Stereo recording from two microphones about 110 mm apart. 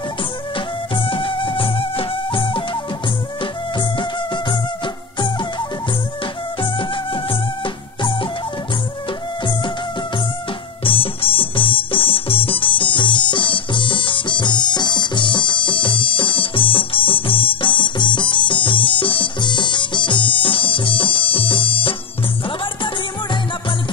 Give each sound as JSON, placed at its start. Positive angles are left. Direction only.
{"t": 0.9, "sound": "music", "side_deg": 50}
{"t": 6.6, "sound": "music", "side_deg": 50}
{"t": 10.8, "sound": "music", "side_deg": 55}